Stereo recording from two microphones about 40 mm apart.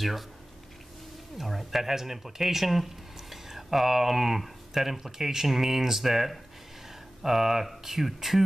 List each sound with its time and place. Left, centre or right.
1.4 s speech: centre